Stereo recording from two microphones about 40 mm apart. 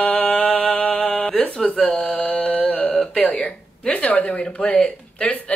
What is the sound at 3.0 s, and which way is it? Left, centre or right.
A woman's voice, centre.